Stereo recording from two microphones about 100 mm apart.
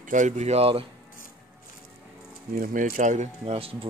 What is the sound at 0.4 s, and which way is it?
Speech, 90° right.